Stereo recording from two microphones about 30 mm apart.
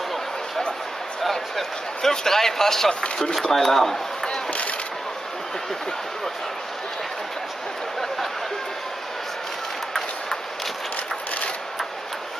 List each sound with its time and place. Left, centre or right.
1.3 s a man's voice: centre
4.5 s speech: left